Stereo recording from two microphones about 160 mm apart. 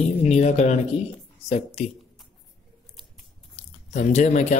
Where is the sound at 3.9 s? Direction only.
45° left (ahead or behind).